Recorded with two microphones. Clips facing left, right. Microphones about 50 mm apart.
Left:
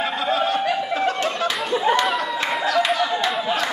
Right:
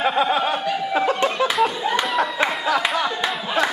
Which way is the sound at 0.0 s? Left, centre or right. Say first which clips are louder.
Right 2 dB; centre.